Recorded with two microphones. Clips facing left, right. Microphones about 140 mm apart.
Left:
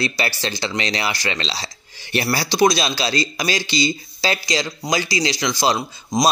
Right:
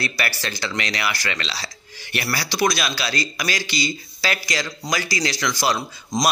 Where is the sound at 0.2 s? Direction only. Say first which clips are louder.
Left 3 dB; 25° left (ahead or behind).